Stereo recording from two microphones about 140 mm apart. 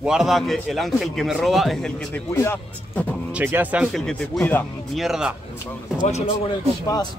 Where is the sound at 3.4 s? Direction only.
10° right (ahead or behind).